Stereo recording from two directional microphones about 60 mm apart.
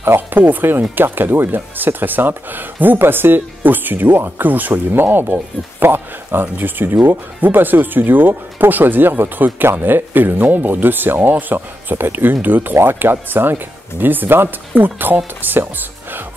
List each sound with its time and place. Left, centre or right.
0.0 s speech: right